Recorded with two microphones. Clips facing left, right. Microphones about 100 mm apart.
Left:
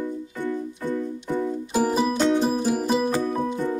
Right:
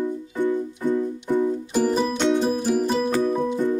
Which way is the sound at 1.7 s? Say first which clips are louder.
Right 1 dB; 10° left (ahead or behind).